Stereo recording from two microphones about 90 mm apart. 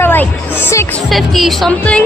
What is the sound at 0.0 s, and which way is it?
Music, 25° left (ahead or behind).